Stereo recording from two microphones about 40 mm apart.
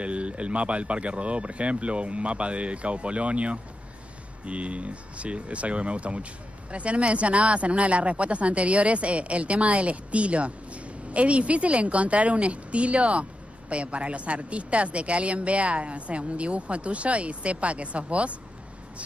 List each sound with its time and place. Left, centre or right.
0.0 s speech: right